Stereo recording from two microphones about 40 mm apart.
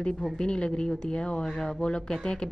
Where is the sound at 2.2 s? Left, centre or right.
Left.